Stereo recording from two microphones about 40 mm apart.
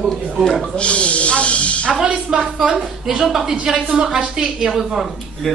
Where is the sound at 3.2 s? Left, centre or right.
Centre.